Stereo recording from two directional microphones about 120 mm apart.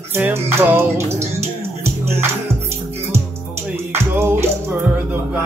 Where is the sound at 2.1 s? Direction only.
20° right (ahead or behind).